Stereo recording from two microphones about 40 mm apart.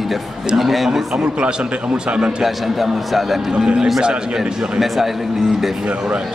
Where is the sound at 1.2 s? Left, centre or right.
Right.